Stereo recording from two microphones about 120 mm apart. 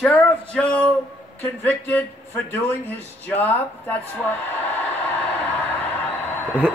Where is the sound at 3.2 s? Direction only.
15° left (ahead or behind).